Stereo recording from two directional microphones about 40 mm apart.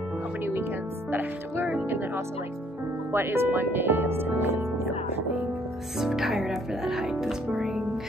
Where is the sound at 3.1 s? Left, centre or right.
Right.